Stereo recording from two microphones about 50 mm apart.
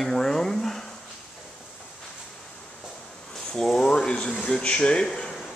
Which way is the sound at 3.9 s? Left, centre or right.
Left.